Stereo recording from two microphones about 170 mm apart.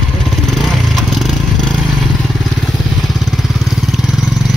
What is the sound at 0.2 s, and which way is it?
Vehicle, centre (ahead or behind).